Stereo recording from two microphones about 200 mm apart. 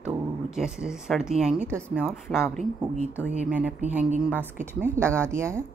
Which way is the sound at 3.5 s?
5° right (ahead or behind).